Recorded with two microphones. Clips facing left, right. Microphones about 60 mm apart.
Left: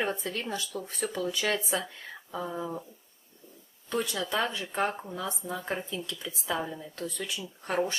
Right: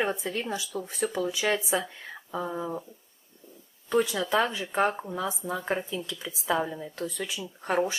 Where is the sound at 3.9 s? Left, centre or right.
Centre.